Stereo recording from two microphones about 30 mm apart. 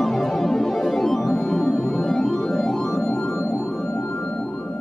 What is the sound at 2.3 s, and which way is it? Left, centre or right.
Music, centre.